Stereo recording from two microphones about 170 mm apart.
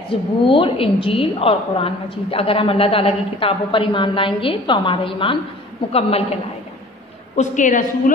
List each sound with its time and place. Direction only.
0.1 s a woman's voice: 30° left (ahead or behind)
7.3 s a woman's voice: 45° left (ahead or behind)